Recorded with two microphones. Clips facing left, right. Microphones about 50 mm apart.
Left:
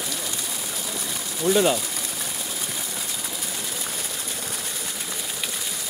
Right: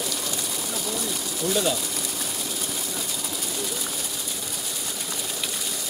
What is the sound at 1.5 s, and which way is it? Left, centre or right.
Speech, left.